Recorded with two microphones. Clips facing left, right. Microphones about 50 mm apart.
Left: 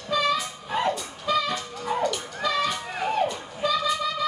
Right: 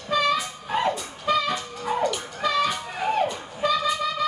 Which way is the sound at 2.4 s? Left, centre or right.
Centre.